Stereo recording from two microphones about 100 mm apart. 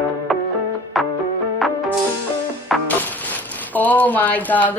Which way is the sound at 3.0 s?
15° left (ahead or behind).